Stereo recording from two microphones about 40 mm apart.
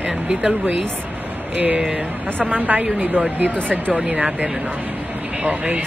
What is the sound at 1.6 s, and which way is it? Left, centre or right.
A woman's voice, right.